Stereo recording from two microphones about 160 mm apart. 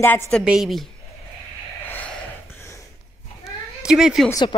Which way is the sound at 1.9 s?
10° left (ahead or behind).